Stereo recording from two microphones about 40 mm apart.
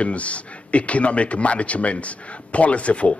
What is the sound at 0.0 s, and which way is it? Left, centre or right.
A man's voice, left.